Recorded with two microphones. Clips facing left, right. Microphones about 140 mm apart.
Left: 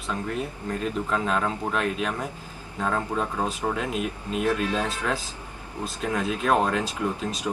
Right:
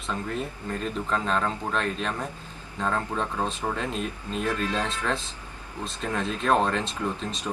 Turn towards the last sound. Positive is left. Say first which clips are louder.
# left 3 dB
turn(degrees=10)  # may be behind; listen again after turning